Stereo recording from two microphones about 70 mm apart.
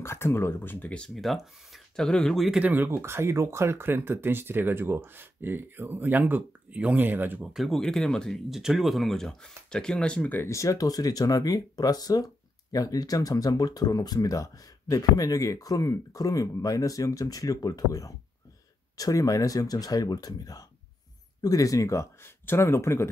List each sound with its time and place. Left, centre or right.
0.0 s speech: left
0.8 s speech: centre
1.1 s speech: centre
2.0 s speech: centre
2.6 s speech: right
3.0 s speech: right
7.5 s speech: centre
8.5 s speech: centre
10.5 s speech: left